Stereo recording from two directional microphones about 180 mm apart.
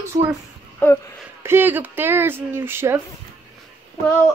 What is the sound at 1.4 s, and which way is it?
Speech, 10° right (ahead or behind).